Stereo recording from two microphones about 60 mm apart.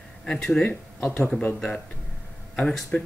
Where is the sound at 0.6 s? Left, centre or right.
Left.